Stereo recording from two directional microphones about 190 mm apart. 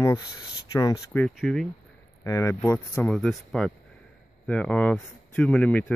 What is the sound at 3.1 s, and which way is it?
Speech, centre (ahead or behind).